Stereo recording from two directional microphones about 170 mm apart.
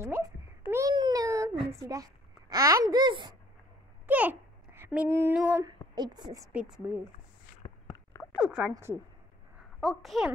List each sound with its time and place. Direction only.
0.0 s babbling: 15° right (ahead or behind)
0.9 s baby cry: 25° right (ahead or behind)
2.5 s speech: 20° right (ahead or behind)
4.0 s a child's voice: 10° right (ahead or behind)
5.9 s speech: 25° right (ahead or behind)
6.5 s a child's voice: 5° right (ahead or behind)
7.6 s a sound: 20° left (ahead or behind)
8.4 s a woman's voice: 5° right (ahead or behind)
9.8 s a child's voice: centre (ahead or behind)